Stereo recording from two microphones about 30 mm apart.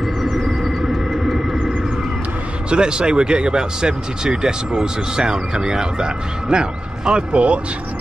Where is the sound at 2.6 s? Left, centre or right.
Right.